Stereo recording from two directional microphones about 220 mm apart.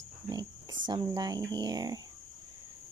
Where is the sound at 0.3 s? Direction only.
20° right (ahead or behind).